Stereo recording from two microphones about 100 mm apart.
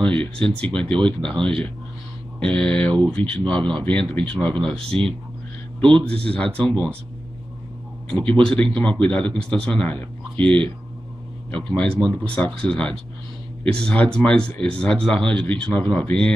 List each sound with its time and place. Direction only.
0.0 s speech: 10° left (ahead or behind)
8.1 s speech: 10° left (ahead or behind)